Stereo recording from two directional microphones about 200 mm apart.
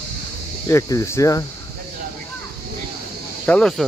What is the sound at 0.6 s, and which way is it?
Speech, 15° left (ahead or behind).